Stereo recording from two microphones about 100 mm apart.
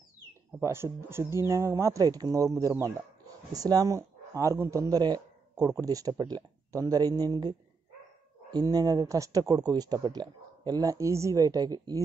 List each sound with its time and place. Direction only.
0.6 s a man's voice: 30° right (ahead or behind)